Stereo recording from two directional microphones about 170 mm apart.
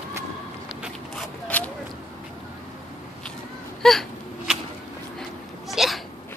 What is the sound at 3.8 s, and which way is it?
Whimper, centre (ahead or behind).